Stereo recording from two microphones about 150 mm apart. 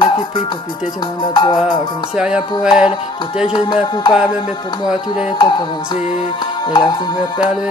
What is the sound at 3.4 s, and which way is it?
Music, 30° left (ahead or behind).